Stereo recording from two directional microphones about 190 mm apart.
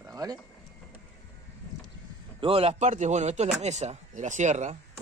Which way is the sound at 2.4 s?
30° right (ahead or behind).